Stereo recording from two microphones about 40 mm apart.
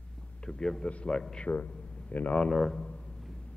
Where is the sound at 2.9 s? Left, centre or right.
Left.